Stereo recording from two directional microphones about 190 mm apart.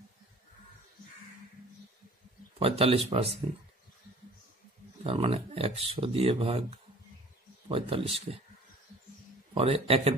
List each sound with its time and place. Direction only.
2.6 s speech: 30° right (ahead or behind)
5.0 s speech: 30° right (ahead or behind)
9.5 s speech: 30° right (ahead or behind)